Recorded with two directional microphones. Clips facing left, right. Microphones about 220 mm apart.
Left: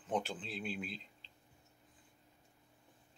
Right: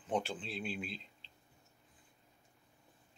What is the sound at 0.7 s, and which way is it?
Speech, 45° left (ahead or behind).